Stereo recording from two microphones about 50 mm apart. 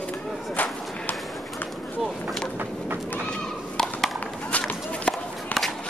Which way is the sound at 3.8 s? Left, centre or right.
Centre.